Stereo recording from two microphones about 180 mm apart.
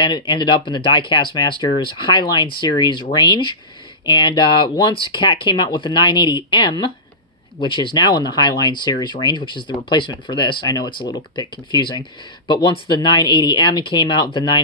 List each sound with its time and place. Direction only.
0.0 s speech: 25° left (ahead or behind)